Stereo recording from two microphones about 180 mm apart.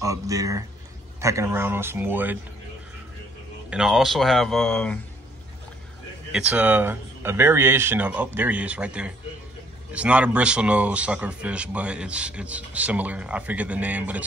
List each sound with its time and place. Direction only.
0.0 s a man's voice: 20° right (ahead or behind)
3.7 s speech: 5° right (ahead or behind)
6.3 s a man's voice: 5° right (ahead or behind)